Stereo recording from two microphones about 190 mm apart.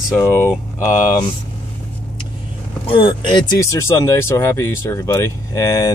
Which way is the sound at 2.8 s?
25° left (ahead or behind).